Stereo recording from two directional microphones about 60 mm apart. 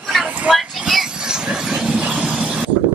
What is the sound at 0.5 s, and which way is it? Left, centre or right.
Vehicle, centre.